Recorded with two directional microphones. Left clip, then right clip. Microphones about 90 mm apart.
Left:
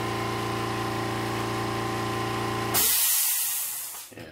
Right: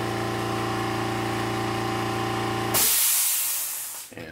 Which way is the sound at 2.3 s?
10° left (ahead or behind).